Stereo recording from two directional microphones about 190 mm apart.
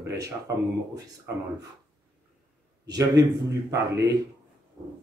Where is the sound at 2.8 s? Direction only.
20° right (ahead or behind).